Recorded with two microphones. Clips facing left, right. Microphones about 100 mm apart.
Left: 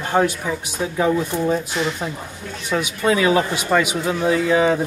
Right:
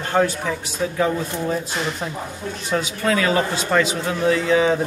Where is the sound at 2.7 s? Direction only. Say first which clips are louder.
Left 2 dB; 15° left (ahead or behind).